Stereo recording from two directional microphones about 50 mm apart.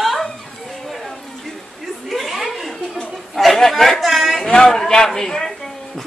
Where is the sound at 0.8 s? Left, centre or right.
Centre.